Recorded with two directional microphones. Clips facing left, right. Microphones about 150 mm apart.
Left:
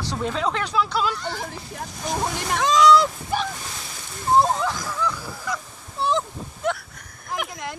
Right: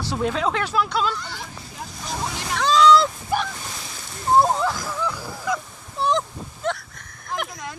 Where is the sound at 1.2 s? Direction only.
50° left (ahead or behind).